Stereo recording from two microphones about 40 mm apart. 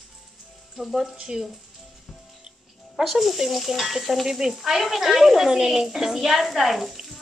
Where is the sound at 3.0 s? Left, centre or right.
Centre.